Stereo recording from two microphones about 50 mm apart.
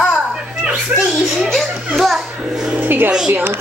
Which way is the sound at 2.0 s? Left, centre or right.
Centre.